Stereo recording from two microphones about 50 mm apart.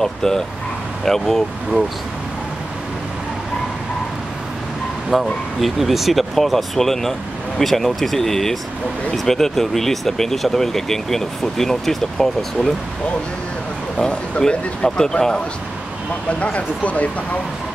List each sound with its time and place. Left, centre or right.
0.0 s speech: centre
5.1 s speech: centre
14.0 s speech: centre
16.3 s speech: left